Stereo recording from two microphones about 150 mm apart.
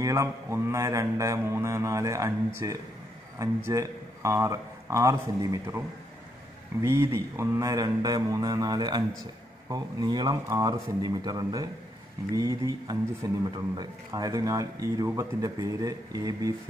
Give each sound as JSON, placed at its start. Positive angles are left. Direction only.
{"t": 0.0, "sound": "speech", "side_deg": -20}